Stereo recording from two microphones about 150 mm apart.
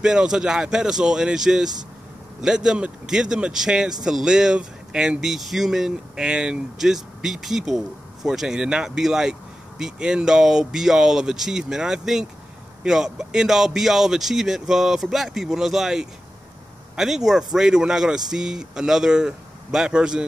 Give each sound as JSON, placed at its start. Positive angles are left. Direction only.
{"t": 0.0, "sound": "speech", "side_deg": -5}